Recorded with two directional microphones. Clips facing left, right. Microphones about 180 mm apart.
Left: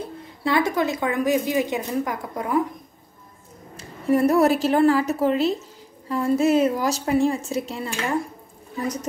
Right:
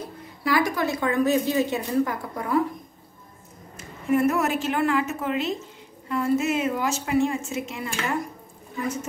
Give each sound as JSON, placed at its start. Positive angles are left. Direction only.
{"t": 0.4, "sound": "a woman's voice", "side_deg": 25}
{"t": 3.7, "sound": "a woman's voice", "side_deg": 35}